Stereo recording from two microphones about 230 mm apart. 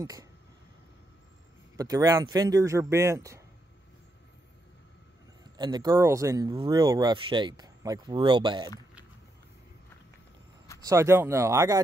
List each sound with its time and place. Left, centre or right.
0.0 s speech: centre
1.8 s speech: centre
5.6 s speech: centre
10.8 s speech: centre